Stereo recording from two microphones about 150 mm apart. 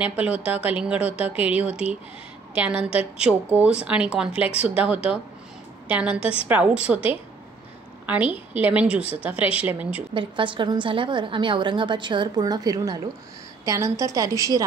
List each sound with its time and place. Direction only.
0.0 s a woman's voice: 10° right (ahead or behind)
10.1 s a woman's voice: 35° right (ahead or behind)